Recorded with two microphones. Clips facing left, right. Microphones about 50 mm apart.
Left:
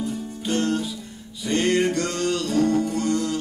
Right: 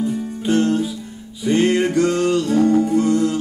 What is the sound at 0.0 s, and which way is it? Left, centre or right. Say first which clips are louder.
Music: right 6 dB; centre.